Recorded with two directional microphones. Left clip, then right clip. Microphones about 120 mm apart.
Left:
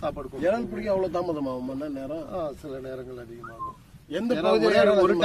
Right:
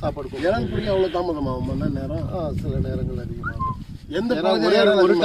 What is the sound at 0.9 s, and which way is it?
Speech, 50° left (ahead or behind).